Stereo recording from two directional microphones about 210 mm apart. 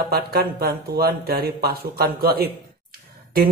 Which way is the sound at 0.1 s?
45° right (ahead or behind).